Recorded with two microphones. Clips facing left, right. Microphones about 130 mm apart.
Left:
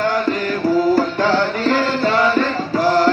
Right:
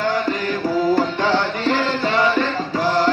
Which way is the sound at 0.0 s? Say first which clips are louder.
Left 2 dB; 40° left (ahead or behind).